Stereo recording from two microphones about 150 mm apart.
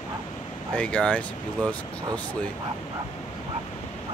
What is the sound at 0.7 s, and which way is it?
Speech, 10° left (ahead or behind).